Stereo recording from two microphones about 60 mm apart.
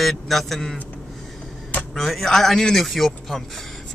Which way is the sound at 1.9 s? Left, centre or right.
Centre.